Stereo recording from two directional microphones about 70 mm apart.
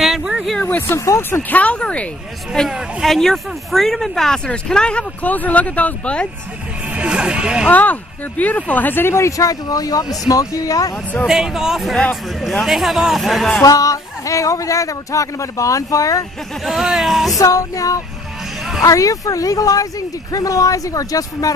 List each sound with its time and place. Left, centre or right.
0.0 s a sound: centre
0.6 s speech: left
0.9 s speech: left
1.5 s speech: centre
2.7 s speech: centre
6.9 s speech: centre
7.7 s speech: left
9.5 s speech: left
11.2 s speech: centre
13.7 s speech: left
16.6 s speech: centre
17.4 s speech: left